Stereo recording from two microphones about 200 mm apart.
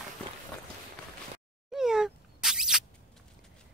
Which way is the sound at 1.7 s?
5° right (ahead or behind).